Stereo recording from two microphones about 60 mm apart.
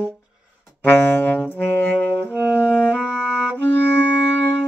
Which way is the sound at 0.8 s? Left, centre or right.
Left.